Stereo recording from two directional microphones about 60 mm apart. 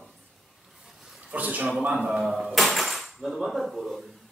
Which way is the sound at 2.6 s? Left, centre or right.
Centre.